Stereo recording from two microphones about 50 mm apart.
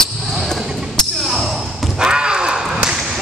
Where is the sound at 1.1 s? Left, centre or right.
Centre.